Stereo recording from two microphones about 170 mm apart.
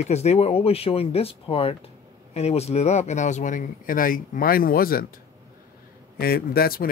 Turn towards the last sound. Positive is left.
turn(degrees=60)  # may be behind; listen again after turning